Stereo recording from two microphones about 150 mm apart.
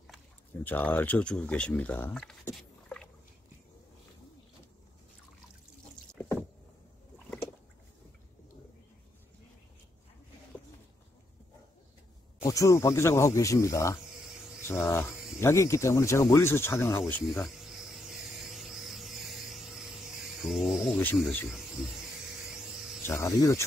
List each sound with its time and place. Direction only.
0.7 s speech: 10° left (ahead or behind)
6.2 s rowboat: 15° left (ahead or behind)
12.4 s speech: 20° left (ahead or behind)
17.5 s a sound: 5° right (ahead or behind)
23.0 s speech: 20° left (ahead or behind)